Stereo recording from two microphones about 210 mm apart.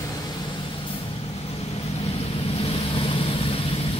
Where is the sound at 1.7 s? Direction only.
30° left (ahead or behind).